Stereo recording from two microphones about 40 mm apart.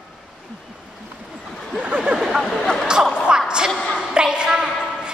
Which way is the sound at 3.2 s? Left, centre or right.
Right.